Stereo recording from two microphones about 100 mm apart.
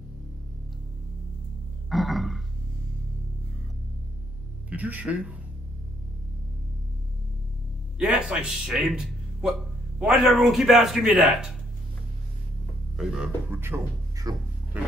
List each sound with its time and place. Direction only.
1.9 s burping: centre (ahead or behind)
4.6 s speech: 15° right (ahead or behind)
8.0 s speech: 10° right (ahead or behind)
12.9 s speech: 5° right (ahead or behind)
13.5 s speech: 20° right (ahead or behind)
14.3 s music: 40° right (ahead or behind)
14.7 s roaring cats: 15° right (ahead or behind)